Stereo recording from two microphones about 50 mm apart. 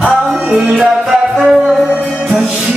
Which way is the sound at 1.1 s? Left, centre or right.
Centre.